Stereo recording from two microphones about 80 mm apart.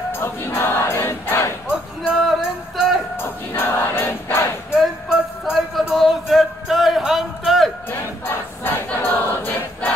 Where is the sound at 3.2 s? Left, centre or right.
Left.